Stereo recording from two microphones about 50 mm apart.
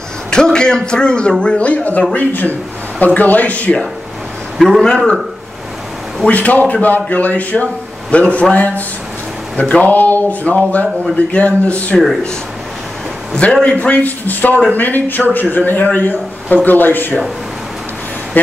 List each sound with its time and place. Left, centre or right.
0.3 s a man's voice: centre
4.6 s a man's voice: centre
4.8 s a man's voice: centre
6.2 s a man's voice: left
13.4 s a man's voice: left